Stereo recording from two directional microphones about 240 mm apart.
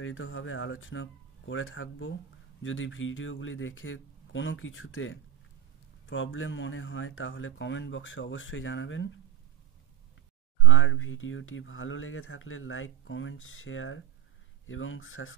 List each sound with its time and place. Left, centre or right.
0.0 s speech: left
10.6 s speech: left